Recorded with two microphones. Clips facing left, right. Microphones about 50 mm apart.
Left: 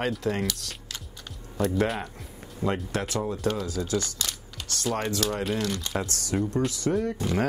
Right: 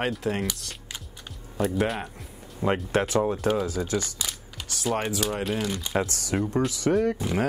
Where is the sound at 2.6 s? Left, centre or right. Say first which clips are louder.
Right 4 dB; right; by 5.9 s centre.